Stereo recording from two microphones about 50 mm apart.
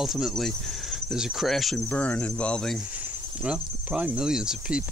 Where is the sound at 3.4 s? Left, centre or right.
Centre.